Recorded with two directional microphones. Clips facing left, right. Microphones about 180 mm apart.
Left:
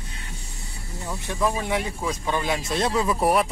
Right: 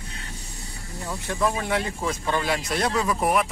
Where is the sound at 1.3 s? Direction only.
15° left (ahead or behind).